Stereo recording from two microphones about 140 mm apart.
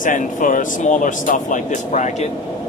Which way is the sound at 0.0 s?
70° left (ahead or behind).